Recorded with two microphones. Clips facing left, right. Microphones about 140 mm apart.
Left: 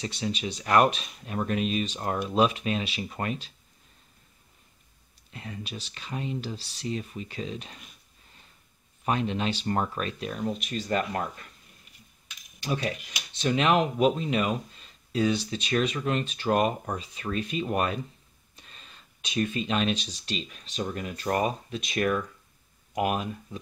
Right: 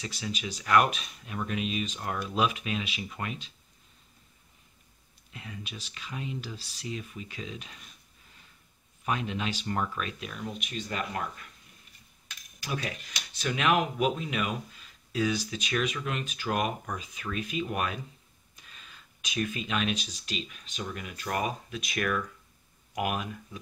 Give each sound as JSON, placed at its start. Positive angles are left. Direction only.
{"t": 0.0, "sound": "speech", "side_deg": 30}
{"t": 5.3, "sound": "speech", "side_deg": 40}
{"t": 9.0, "sound": "speech", "side_deg": 35}
{"t": 12.5, "sound": "speech", "side_deg": 25}